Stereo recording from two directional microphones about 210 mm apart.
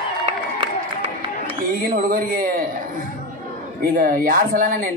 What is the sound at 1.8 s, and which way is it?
Speech, 45° right (ahead or behind).